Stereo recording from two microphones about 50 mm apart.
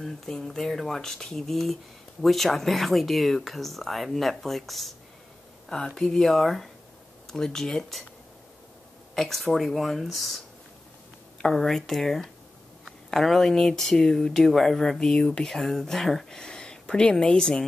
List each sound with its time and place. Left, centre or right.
0.0 s speech: centre
5.7 s speech: centre
9.1 s speech: centre
11.5 s speech: centre